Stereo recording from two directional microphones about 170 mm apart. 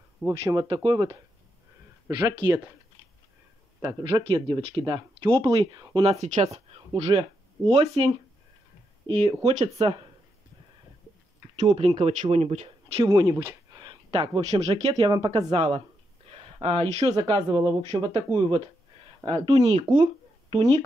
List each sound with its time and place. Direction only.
0.2 s speech: 20° right (ahead or behind)
3.8 s speech: 30° right (ahead or behind)
6.2 s speech: 40° right (ahead or behind)
9.2 s speech: 45° right (ahead or behind)
11.7 s speech: 35° right (ahead or behind)
13.0 s speech: 20° right (ahead or behind)
16.3 s a sound: 35° right (ahead or behind)
17.2 s speech: 30° right (ahead or behind)